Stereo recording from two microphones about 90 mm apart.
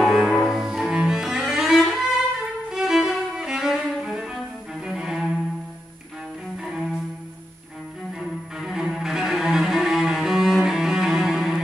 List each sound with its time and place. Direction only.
0.0 s music: 5° left (ahead or behind)
0.5 s cello: 5° right (ahead or behind)
6.6 s cello: 5° right (ahead or behind)
8.2 s cello: 5° right (ahead or behind)